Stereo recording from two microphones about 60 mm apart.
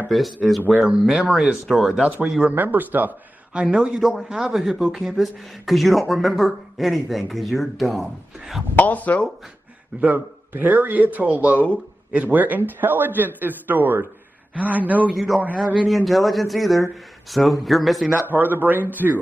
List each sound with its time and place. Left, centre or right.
0.1 s speech: centre
2.4 s speech: right
3.7 s speech: centre
8.7 s speech: left
10.1 s speech: right
15.1 s speech: centre
18.2 s speech: right